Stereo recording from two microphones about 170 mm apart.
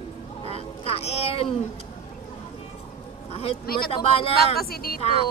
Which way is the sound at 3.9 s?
35° left (ahead or behind).